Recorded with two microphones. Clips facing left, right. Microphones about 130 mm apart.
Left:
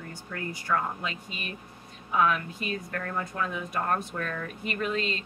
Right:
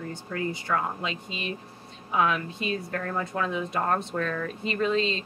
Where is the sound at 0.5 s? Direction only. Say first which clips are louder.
Right 1 dB; 25° right (ahead or behind).